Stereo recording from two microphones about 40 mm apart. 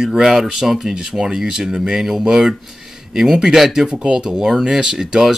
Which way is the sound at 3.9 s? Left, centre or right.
Right.